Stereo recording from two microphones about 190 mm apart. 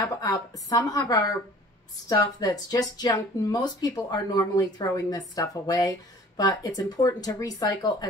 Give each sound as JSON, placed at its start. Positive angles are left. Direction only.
{"t": 0.0, "sound": "speech", "side_deg": 20}